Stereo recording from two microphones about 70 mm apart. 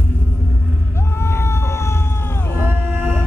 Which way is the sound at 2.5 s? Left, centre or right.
Right.